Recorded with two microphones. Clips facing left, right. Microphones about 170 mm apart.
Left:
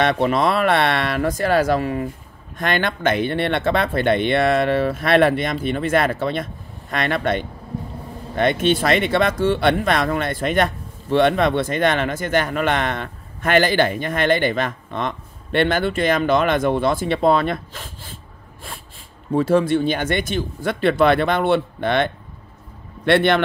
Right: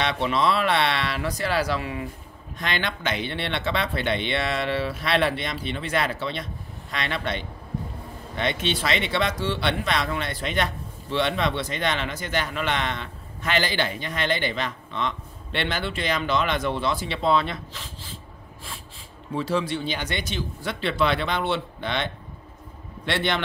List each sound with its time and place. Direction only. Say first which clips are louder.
0.0 s speech: left 6 dB; 50° left (ahead or behind)
19.3 s a man's voice: left 9 dB; 50° left (ahead or behind)